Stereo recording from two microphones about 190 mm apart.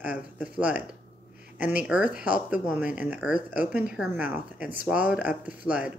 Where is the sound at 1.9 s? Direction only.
5° right (ahead or behind).